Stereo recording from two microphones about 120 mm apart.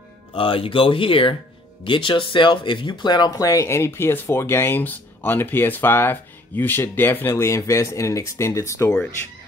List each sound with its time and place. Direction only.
0.3 s speech: 50° left (ahead or behind); by 8.9 s 25° left (ahead or behind)